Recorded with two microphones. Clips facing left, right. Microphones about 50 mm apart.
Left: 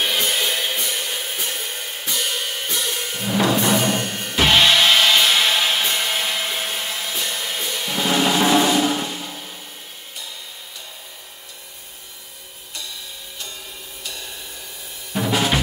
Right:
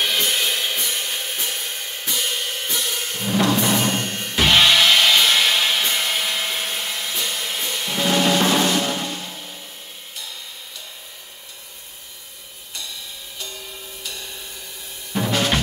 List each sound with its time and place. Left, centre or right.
0.0 s music: centre
15.1 s drum kit: centre